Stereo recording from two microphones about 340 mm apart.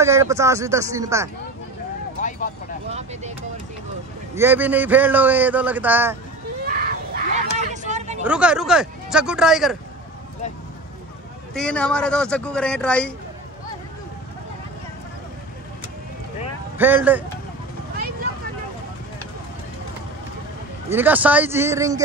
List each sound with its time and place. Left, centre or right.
0.0 s speech: centre
2.9 s speech: centre
4.4 s a man's voice: centre
6.7 s a sound: right
8.2 s a man's voice: centre
11.5 s a man's voice: centre
16.7 s a man's voice: centre
20.9 s speech: centre